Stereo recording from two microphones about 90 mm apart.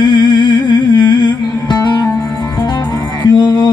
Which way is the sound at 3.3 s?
50° left (ahead or behind).